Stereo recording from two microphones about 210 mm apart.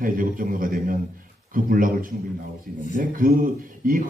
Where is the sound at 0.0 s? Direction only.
40° right (ahead or behind).